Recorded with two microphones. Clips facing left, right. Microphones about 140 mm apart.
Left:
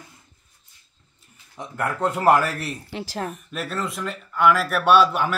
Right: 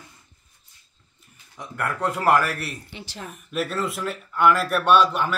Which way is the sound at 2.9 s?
90° left.